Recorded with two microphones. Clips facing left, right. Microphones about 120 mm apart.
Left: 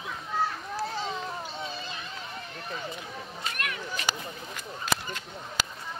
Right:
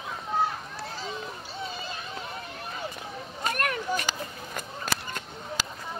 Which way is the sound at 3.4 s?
45° right (ahead or behind).